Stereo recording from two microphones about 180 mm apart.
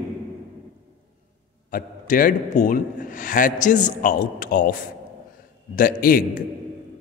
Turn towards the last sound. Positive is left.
turn(degrees=50)  # may be behind; listen again after turning